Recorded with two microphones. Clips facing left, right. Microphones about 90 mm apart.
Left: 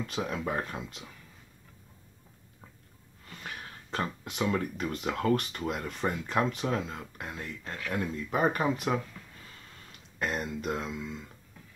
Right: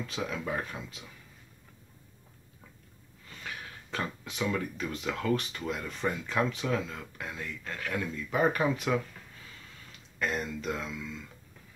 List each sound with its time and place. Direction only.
0.0 s speech: 45° left (ahead or behind)
3.4 s a sound: 40° left (ahead or behind)
4.3 s speech: 45° left (ahead or behind)
10.1 s speech: 40° left (ahead or behind)